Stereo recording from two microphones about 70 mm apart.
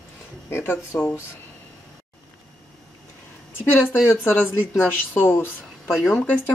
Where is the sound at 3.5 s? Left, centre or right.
Left.